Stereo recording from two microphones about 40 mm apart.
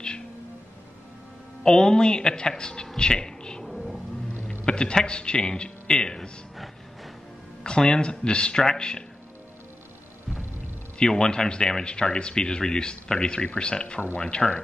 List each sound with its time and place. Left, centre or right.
1.6 s speech: left
3.0 s a sound: centre
3.6 s music: centre
4.6 s a man's voice: left
7.6 s speech: left
11.0 s speech: centre